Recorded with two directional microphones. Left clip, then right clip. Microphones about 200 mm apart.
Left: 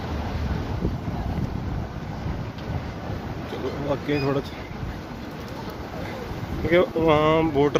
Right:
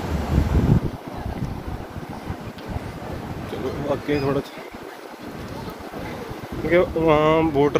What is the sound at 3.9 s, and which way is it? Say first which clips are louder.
Speech: right 2 dB; centre (ahead or behind).